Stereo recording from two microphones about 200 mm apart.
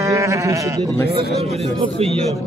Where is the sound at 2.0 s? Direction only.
30° right (ahead or behind).